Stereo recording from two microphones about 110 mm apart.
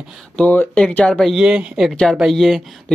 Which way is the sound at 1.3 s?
5° right (ahead or behind).